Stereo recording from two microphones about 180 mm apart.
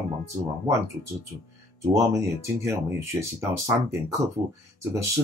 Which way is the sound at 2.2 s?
15° right (ahead or behind).